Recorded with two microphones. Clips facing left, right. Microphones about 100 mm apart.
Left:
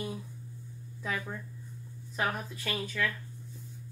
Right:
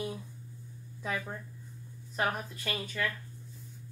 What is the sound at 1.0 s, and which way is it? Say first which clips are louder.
Speech: even; 15° right (ahead or behind).